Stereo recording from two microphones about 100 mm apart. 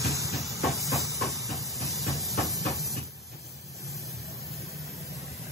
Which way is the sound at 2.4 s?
Centre (ahead or behind).